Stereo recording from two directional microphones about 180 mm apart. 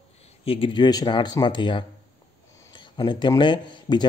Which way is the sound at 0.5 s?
25° left (ahead or behind).